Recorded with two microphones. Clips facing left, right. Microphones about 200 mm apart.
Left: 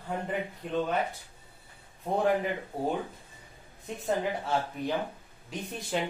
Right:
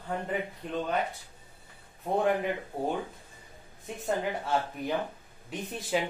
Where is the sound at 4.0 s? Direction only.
Centre (ahead or behind).